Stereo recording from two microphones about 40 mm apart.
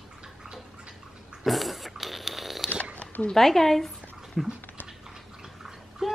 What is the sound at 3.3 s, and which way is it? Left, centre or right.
Speech, centre.